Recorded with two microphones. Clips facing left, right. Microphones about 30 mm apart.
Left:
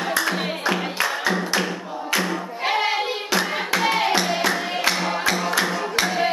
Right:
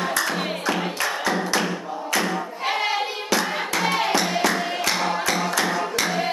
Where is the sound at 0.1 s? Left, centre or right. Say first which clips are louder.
Left 1 dB; centre.